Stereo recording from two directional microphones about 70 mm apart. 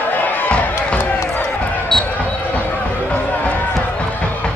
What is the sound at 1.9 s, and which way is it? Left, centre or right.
Basketball bounce, centre.